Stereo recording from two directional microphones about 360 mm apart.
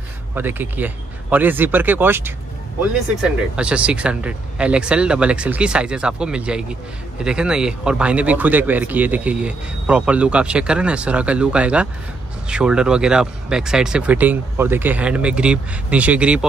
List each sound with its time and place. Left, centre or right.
0.3 s speech: centre